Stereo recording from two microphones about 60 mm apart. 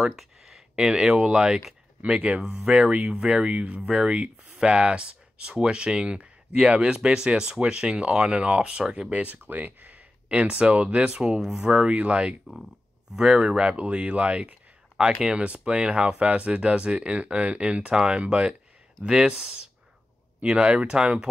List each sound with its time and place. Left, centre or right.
0.0 s speech: centre